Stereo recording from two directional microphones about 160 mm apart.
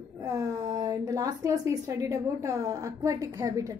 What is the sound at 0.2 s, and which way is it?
A woman's voice, 20° right (ahead or behind).